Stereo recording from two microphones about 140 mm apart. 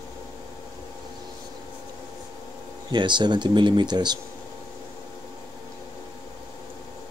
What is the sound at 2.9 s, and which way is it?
Speech, 35° right (ahead or behind).